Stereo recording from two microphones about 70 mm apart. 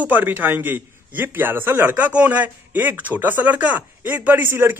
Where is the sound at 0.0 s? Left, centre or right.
Right.